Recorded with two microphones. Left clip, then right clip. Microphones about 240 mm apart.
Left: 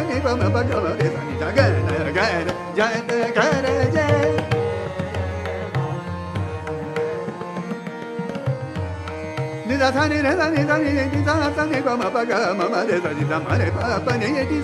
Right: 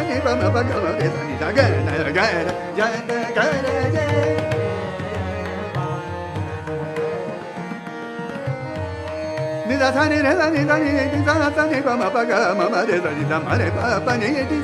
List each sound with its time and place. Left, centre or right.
0.1 s music: centre
2.7 s music: centre
9.7 s music: centre